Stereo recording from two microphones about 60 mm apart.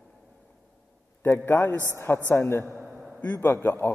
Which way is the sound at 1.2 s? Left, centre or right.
Left.